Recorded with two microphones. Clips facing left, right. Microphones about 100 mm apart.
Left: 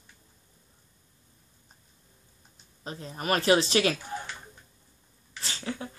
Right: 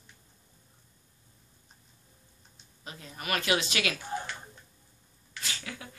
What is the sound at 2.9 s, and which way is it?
Speech, 35° left (ahead or behind).